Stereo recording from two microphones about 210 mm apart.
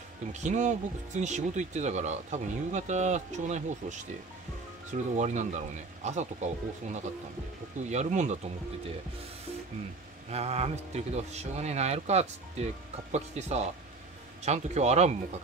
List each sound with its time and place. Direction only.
0.3 s speech: 35° right (ahead or behind)
10.3 s speech: 30° right (ahead or behind)